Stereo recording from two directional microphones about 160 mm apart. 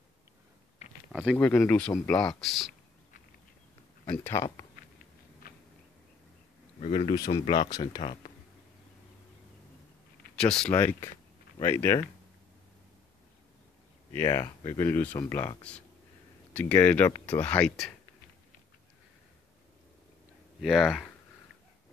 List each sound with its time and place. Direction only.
1.1 s speech: centre (ahead or behind)
4.1 s speech: 15° left (ahead or behind)
5.4 s a sound: 70° left (ahead or behind)
6.8 s speech: 35° left (ahead or behind)
7.2 s speech: 25° left (ahead or behind)
10.3 s speech: 5° left (ahead or behind)
14.1 s speech: 20° left (ahead or behind)
14.8 s speech: 15° left (ahead or behind)
20.6 s speech: centre (ahead or behind)